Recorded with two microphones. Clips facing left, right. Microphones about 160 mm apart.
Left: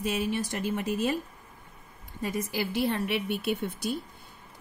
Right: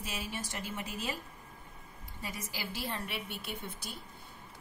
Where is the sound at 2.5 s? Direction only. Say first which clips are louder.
Left 11 dB; 55° left (ahead or behind); by 3.9 s 75° left (ahead or behind).